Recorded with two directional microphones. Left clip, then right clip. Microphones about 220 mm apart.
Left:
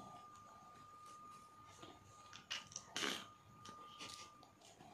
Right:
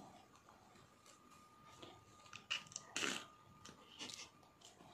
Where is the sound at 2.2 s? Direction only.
5° left (ahead or behind).